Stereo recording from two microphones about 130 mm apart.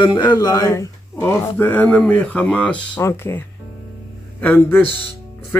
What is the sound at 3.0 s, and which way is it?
A man's voice, 20° left (ahead or behind).